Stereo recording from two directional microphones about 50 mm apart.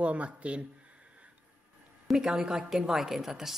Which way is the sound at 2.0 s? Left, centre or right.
Centre.